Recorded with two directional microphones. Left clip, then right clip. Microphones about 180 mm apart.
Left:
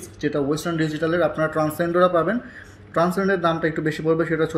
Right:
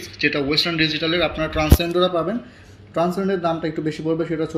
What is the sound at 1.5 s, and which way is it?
Speech, 30° left (ahead or behind).